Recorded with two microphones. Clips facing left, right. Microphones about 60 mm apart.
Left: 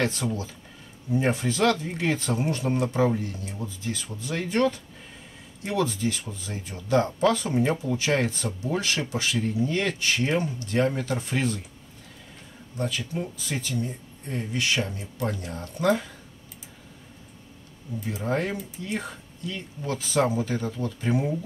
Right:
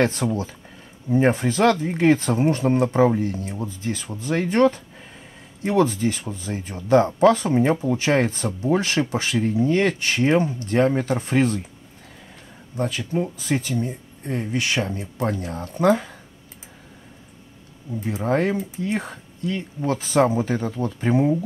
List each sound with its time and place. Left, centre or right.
0.0 s speech: right
12.7 s speech: right
18.0 s speech: right